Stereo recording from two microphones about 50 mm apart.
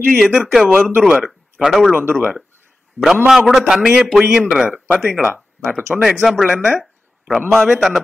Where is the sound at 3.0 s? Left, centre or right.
Left.